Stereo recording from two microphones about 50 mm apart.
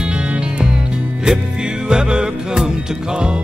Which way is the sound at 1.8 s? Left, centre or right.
Centre.